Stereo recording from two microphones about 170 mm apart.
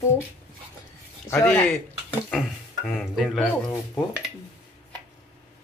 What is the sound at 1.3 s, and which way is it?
Speech, 10° left (ahead or behind).